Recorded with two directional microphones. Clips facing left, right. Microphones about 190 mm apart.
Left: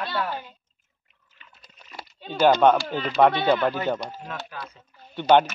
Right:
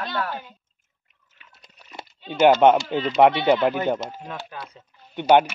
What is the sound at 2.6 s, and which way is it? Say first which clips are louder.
Speech: right 2 dB; 20° right (ahead or behind).